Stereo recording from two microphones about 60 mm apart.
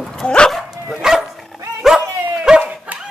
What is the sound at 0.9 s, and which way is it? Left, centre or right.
Dog, centre.